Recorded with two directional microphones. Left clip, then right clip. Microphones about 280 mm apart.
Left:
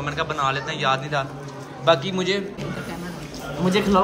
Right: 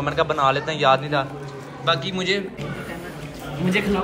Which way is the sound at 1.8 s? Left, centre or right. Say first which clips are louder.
Left 2 dB; left.